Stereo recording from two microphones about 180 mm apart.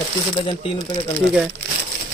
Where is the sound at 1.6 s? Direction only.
70° right (ahead or behind).